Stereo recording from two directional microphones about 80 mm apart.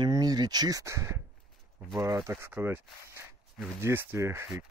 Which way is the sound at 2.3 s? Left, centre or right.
Right.